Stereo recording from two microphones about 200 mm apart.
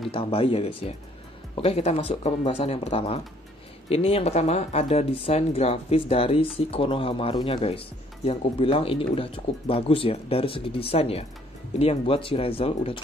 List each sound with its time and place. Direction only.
0.1 s speech: 25° left (ahead or behind)